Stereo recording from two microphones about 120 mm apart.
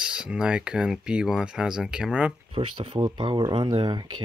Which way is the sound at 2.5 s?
45° right (ahead or behind).